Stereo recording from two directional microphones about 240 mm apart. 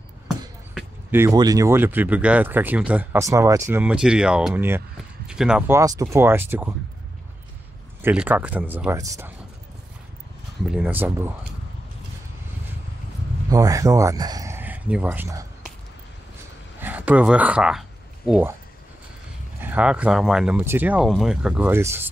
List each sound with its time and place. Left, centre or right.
0.7 s speech: centre
8.0 s speech: centre
10.7 s speech: centre
13.5 s speech: centre
16.8 s speech: centre
19.6 s speech: centre